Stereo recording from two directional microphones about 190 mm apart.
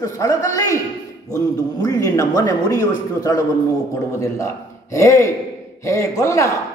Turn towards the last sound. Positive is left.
turn(degrees=15)  # may be behind; listen again after turning